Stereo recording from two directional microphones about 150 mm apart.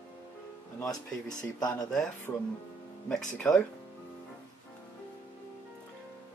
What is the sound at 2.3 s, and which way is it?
Speech, 15° left (ahead or behind).